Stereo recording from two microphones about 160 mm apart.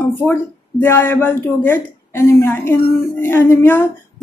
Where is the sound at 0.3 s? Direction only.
15° left (ahead or behind).